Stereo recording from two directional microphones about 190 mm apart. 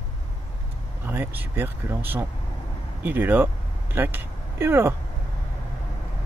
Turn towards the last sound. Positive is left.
turn(degrees=-10)  # may be behind; listen again after turning